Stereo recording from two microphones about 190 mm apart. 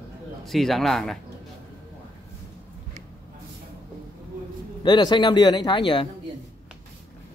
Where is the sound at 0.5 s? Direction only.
Centre (ahead or behind).